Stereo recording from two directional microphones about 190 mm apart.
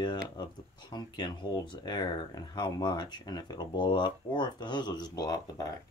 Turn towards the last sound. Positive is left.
turn(degrees=20)  # may be behind; listen again after turning